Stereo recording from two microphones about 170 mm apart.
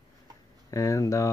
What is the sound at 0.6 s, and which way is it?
Speech, 20° left (ahead or behind).